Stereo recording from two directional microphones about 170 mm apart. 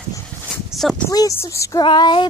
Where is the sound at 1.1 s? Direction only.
20° left (ahead or behind).